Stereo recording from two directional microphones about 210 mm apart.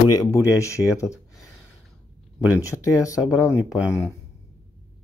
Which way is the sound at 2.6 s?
15° left (ahead or behind).